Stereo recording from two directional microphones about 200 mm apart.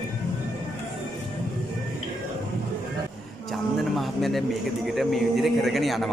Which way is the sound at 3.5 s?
Centre (ahead or behind).